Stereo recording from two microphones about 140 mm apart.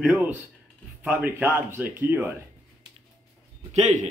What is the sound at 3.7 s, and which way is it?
Speech, 55° right (ahead or behind).